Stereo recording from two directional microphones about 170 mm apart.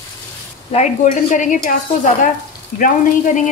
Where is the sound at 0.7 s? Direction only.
45° left (ahead or behind).